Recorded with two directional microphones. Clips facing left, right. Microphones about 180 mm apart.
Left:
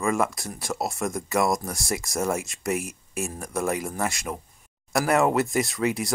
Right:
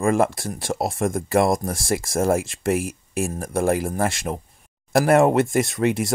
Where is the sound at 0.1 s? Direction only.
30° right (ahead or behind).